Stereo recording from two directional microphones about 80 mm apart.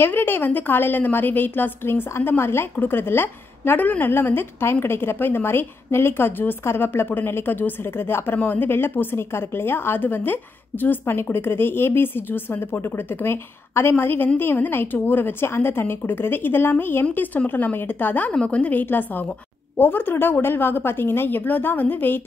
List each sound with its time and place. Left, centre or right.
0.0 s a woman's voice: left